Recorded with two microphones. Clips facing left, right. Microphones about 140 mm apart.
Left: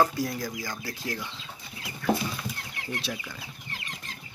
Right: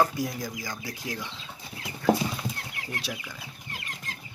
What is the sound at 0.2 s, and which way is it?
Speech, 15° right (ahead or behind).